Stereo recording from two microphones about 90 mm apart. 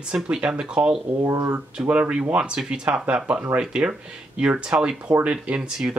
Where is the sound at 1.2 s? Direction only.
35° right (ahead or behind).